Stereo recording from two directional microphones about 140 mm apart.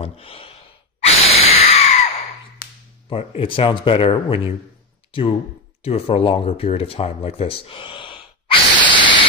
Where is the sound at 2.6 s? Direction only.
90° left.